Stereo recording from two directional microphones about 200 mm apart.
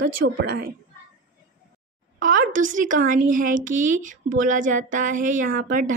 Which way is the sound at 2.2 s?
40° right (ahead or behind).